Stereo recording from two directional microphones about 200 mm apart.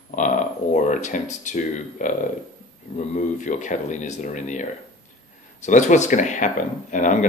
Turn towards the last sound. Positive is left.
turn(degrees=40)  # may be behind; listen again after turning